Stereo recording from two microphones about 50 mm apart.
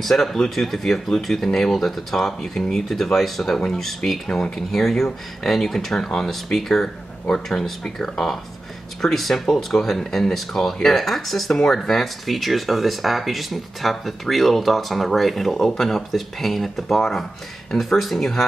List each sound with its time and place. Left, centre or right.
0.0 s speech: centre
9.0 s speech: centre